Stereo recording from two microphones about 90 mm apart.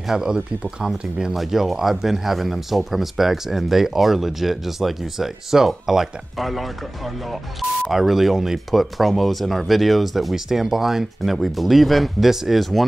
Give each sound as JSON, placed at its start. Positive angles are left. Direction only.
{"t": 0.1, "sound": "speech", "side_deg": -5}
{"t": 7.9, "sound": "speech", "side_deg": 0}